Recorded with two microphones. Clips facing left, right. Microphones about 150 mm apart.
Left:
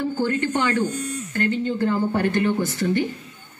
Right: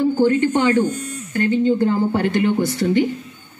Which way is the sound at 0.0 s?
15° right (ahead or behind).